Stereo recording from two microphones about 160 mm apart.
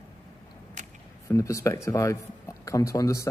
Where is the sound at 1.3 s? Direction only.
20° left (ahead or behind).